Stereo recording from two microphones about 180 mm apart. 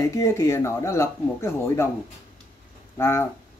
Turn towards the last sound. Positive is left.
turn(degrees=15)  # may be behind; listen again after turning